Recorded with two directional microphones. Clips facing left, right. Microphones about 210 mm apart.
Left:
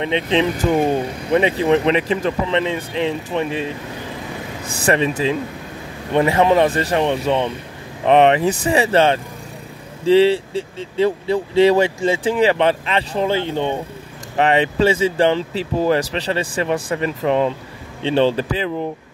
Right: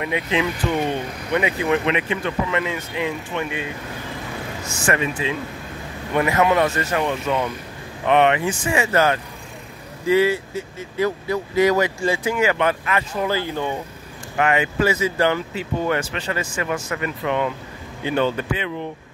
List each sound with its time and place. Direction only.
0.0 s speech: 30° left (ahead or behind)
4.7 s speech: 35° left (ahead or behind)